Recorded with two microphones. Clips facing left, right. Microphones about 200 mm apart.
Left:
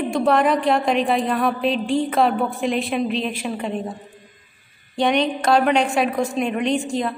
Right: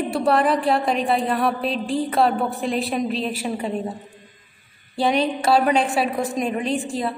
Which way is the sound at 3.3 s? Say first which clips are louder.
Even; 40° right (ahead or behind).